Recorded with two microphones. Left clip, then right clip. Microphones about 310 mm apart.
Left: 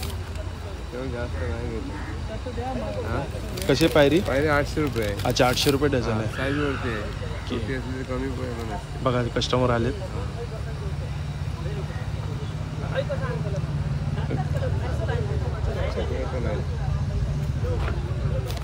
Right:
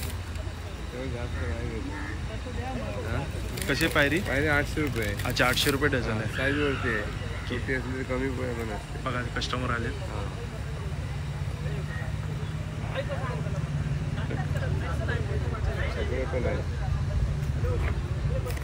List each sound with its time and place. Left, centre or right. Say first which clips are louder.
3.6 s speech: left 6 dB; centre
9.0 s speech: left 8 dB; centre